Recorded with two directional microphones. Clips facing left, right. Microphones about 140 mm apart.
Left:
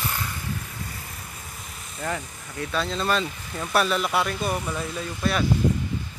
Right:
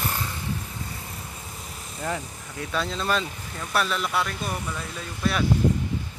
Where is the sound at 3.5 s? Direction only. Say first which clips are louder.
Left 3 dB; 5° left (ahead or behind).